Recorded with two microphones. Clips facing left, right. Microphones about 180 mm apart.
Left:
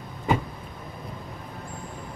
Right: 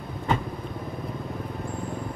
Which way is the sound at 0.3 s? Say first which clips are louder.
Left 2 dB; 10° left (ahead or behind).